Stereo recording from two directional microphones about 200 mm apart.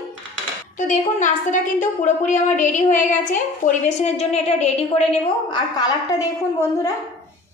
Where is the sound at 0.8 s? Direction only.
40° left (ahead or behind).